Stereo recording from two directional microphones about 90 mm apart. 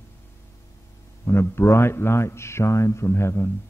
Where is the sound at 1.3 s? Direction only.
30° left (ahead or behind).